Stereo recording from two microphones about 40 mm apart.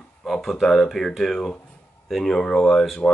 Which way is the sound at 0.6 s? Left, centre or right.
Centre.